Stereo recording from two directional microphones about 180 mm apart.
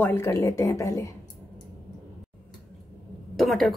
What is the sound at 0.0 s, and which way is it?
A woman's voice, 15° left (ahead or behind).